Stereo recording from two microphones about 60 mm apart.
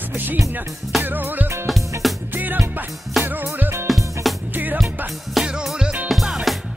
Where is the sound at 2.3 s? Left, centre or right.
Right.